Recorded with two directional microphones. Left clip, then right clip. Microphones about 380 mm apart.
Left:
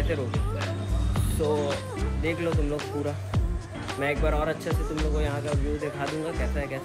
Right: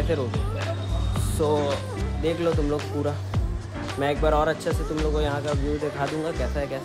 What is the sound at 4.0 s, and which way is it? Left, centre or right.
Speech, centre.